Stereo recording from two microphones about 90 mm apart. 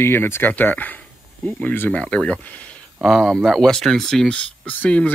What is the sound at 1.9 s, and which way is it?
Speech, 10° left (ahead or behind).